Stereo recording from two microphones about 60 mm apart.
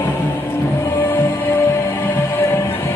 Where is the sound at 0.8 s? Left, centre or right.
Left.